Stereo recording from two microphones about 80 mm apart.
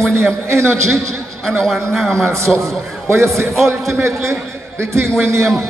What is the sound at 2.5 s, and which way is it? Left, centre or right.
A man's voice, right.